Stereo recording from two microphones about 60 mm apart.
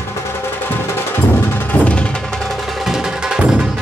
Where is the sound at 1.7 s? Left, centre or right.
Left.